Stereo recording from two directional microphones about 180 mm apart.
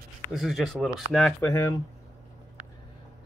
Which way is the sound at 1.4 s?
15° left (ahead or behind).